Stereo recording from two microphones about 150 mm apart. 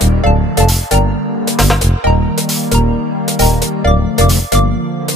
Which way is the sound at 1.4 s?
Centre (ahead or behind).